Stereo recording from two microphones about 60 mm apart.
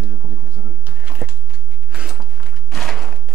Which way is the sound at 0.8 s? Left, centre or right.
Right.